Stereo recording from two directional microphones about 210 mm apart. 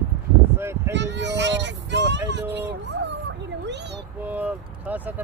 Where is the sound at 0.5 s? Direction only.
10° right (ahead or behind).